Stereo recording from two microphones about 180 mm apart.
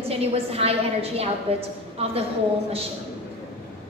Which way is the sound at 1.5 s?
30° right (ahead or behind).